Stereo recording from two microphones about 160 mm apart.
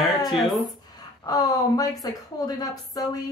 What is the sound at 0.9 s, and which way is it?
A woman's voice, 25° left (ahead or behind).